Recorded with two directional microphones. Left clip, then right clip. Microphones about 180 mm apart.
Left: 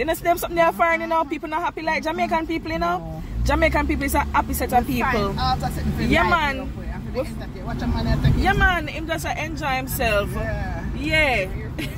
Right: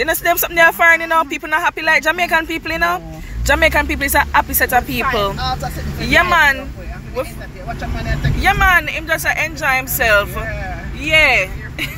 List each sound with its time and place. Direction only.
0.0 s speech: 5° left (ahead or behind)
8.4 s speech: 20° left (ahead or behind)